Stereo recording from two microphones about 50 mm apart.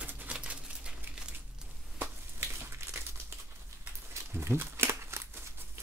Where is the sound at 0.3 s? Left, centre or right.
Right.